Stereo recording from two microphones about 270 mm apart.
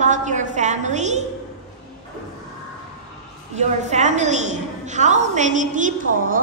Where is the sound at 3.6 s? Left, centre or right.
Right.